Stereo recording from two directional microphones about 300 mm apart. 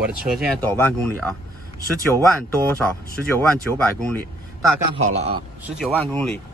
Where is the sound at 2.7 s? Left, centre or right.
Centre.